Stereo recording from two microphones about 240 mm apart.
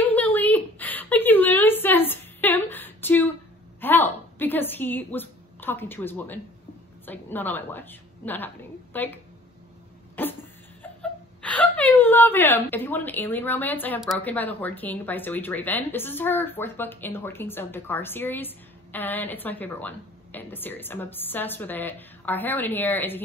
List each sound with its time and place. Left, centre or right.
0.0 s a sound: centre
7.1 s speech: centre
10.2 s dog: centre
10.8 s speech: centre